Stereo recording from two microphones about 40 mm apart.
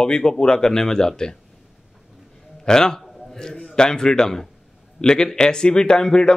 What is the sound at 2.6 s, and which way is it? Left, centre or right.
A man's voice, centre.